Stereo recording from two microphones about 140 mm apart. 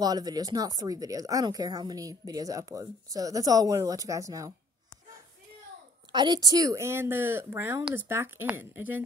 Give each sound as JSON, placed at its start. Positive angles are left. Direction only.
{"t": 0.0, "sound": "speech", "side_deg": -30}
{"t": 6.1, "sound": "speech", "side_deg": -30}